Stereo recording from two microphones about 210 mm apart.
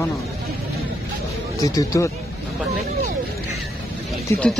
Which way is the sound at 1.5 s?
15° left (ahead or behind).